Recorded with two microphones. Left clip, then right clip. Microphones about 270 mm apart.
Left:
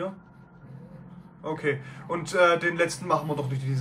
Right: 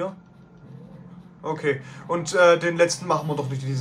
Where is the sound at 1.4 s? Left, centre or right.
Centre.